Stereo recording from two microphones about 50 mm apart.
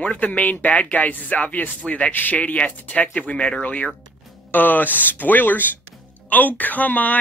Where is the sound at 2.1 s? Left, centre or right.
Left.